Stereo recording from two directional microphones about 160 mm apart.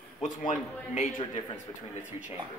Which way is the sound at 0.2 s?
55° left (ahead or behind).